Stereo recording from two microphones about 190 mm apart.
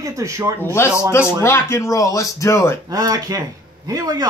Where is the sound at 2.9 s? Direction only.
20° right (ahead or behind).